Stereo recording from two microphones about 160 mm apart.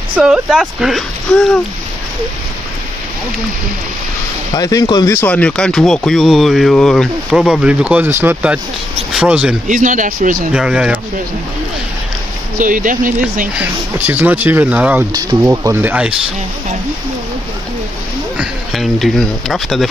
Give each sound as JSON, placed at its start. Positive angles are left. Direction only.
{"t": 0.1, "sound": "speech", "side_deg": -5}
{"t": 4.6, "sound": "speech", "side_deg": 25}
{"t": 5.1, "sound": "speech", "side_deg": 10}
{"t": 9.7, "sound": "speech", "side_deg": -55}
{"t": 10.5, "sound": "speech", "side_deg": -5}
{"t": 12.5, "sound": "speech", "side_deg": -55}
{"t": 13.6, "sound": "speech", "side_deg": -10}
{"t": 15.1, "sound": "speech", "side_deg": -20}
{"t": 18.4, "sound": "speech", "side_deg": 0}